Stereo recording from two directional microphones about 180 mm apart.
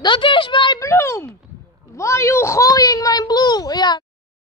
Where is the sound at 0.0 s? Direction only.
25° left (ahead or behind).